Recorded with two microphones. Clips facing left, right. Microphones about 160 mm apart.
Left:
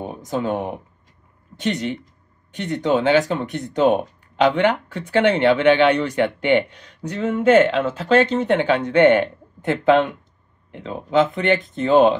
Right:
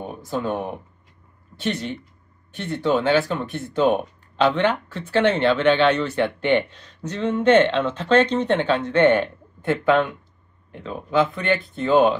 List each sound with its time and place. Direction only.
0.0 s speech: 20° left (ahead or behind)